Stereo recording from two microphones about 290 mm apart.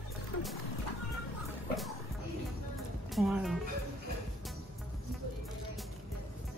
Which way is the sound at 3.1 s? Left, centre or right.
Centre.